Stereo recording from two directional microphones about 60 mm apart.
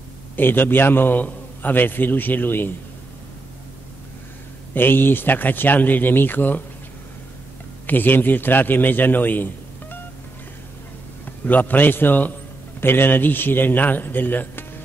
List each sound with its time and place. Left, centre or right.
0.4 s a man's voice: left
4.7 s a man's voice: left
7.8 s a man's voice: left
11.4 s a man's voice: left